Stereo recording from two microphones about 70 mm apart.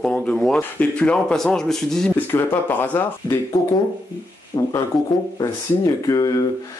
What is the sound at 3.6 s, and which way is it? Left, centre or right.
Speech, left.